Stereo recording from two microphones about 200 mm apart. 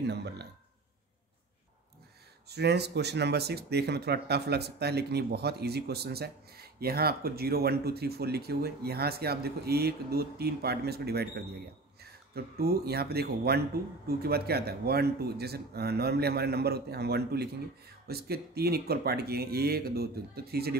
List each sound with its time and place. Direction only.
0.0 s speech: 55° right (ahead or behind)
2.5 s speech: 55° right (ahead or behind)